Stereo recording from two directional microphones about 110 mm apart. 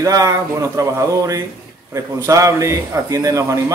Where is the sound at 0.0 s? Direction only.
30° right (ahead or behind).